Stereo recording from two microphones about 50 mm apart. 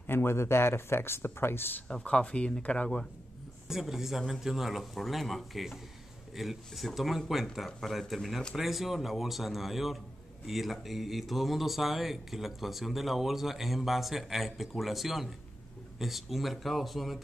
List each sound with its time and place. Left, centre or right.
0.0 s speech: left
2.0 s speech: left
3.6 s speech: centre